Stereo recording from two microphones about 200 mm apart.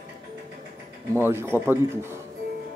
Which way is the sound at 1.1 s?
10° right (ahead or behind).